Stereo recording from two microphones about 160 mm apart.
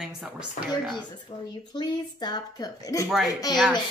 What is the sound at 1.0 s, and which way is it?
Speech, 25° left (ahead or behind).